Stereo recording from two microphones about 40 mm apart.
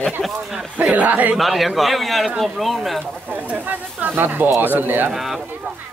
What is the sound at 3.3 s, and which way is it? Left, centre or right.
Speech, right.